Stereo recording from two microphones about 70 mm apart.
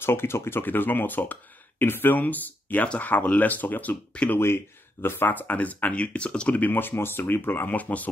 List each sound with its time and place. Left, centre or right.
0.0 s speech: left; by 4.4 s centre
5.0 s speech: left